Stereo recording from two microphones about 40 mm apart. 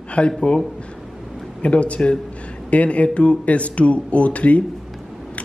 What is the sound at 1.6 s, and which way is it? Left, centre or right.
Speech, left.